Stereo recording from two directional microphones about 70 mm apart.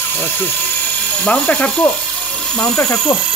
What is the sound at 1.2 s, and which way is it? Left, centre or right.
Speech, centre.